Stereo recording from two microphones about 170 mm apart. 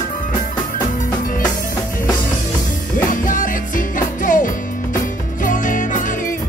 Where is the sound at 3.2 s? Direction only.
50° left (ahead or behind).